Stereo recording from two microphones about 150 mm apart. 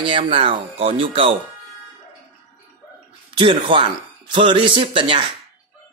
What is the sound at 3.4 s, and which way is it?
Speech, 35° right (ahead or behind).